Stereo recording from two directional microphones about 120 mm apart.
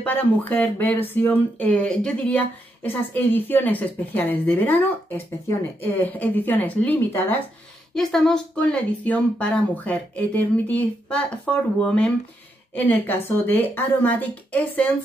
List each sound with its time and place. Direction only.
0.0 s speech: 15° left (ahead or behind)
7.9 s speech: 5° left (ahead or behind)